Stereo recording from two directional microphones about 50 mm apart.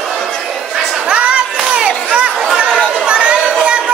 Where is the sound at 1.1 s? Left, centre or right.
Centre.